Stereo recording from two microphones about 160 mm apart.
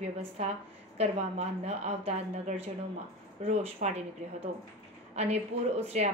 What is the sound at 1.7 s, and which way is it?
A woman's voice, 40° right (ahead or behind).